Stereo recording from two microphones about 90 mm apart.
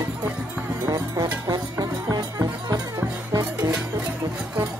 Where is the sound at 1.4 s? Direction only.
45° right (ahead or behind).